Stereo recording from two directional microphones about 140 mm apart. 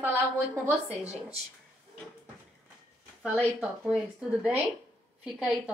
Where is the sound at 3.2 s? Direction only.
10° right (ahead or behind).